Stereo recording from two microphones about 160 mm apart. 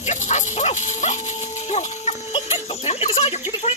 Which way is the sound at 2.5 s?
40° left (ahead or behind).